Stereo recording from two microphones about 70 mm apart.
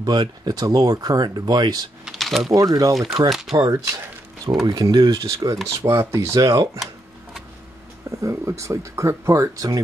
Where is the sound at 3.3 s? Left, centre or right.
Centre.